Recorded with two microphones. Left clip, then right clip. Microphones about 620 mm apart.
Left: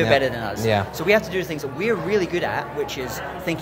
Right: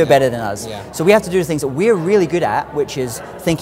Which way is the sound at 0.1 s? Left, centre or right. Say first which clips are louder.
Right 6 dB; right.